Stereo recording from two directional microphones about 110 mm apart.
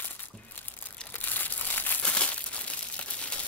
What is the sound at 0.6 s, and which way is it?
Crumpling, 15° left (ahead or behind).